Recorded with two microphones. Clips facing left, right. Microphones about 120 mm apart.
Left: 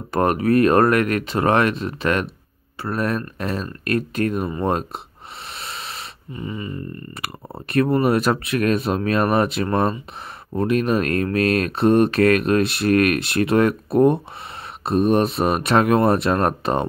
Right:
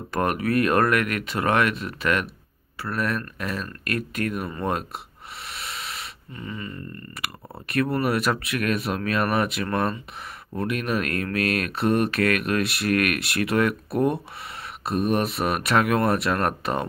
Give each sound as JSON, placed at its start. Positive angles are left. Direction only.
{"t": 0.1, "sound": "speech", "side_deg": 35}
{"t": 5.5, "sound": "wheeze", "side_deg": 30}
{"t": 6.3, "sound": "speech", "side_deg": 20}
{"t": 7.2, "sound": "speech", "side_deg": 30}